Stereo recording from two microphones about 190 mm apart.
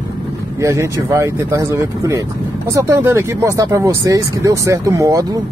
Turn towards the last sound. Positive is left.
turn(degrees=-20)  # may be behind; listen again after turning